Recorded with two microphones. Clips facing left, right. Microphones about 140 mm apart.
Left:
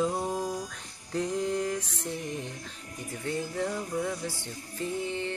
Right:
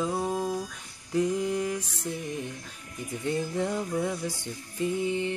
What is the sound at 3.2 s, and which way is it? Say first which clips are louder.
Music: right 3 dB; 20° right (ahead or behind).